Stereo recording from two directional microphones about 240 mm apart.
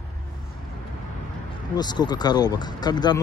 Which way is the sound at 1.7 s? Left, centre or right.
Centre.